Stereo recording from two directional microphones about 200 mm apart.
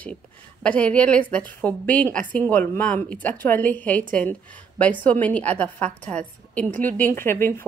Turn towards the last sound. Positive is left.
turn(degrees=10)  # may be behind; listen again after turning